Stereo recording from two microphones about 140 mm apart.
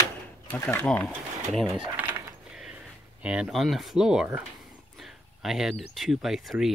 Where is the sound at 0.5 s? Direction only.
15° left (ahead or behind).